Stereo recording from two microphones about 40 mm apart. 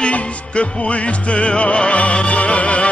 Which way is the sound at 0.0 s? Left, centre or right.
Left.